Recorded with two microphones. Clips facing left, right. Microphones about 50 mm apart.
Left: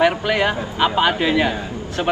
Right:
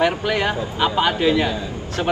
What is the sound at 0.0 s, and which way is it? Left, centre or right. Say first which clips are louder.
Speech: left 2 dB; centre.